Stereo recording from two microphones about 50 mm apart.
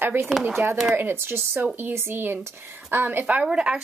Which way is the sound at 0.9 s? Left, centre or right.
Right.